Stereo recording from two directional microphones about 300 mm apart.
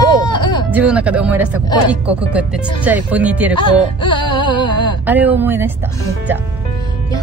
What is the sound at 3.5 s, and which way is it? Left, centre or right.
Music, centre.